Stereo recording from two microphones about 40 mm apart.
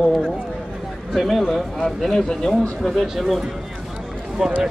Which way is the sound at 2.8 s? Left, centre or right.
Centre.